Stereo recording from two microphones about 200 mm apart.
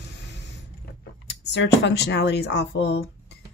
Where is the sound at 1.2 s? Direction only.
60° left (ahead or behind).